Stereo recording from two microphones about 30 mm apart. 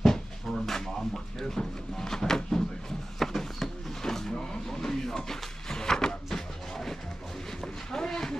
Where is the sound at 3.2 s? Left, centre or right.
Centre.